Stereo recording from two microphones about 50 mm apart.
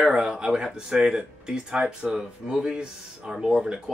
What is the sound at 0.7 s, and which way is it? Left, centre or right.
Speech, centre.